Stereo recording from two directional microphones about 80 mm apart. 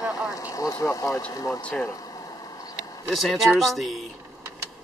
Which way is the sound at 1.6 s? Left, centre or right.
Centre.